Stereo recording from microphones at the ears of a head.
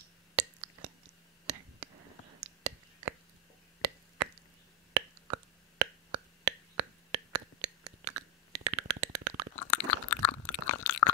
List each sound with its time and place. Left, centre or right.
0.0 s whispering: right
4.9 s a sound: right
9.5 s chewing: left